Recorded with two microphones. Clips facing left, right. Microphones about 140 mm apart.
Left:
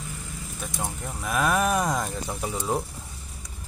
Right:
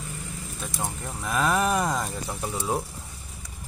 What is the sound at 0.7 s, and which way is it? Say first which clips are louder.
Speech: even; centre (ahead or behind).